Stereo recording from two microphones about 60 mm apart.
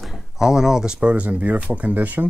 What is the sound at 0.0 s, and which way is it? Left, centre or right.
Speech, centre.